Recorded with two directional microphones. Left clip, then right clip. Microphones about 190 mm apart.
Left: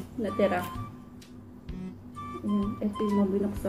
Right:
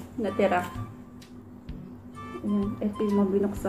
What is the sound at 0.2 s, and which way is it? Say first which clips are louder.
Speech: right 2 dB; 10° right (ahead or behind).